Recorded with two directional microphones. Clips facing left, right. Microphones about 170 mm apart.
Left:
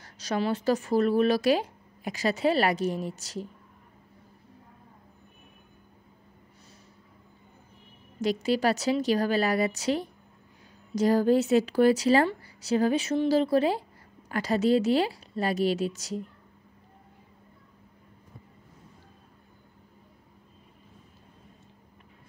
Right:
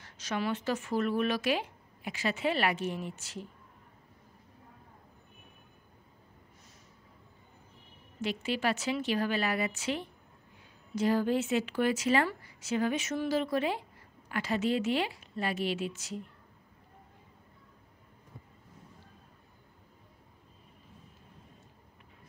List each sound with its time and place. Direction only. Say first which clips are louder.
0.0 s speech: left 5 dB; 35° left (ahead or behind)
8.2 s speech: left 7 dB; 40° left (ahead or behind)